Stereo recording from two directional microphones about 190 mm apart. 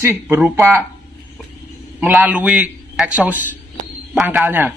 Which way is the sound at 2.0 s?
5° right (ahead or behind).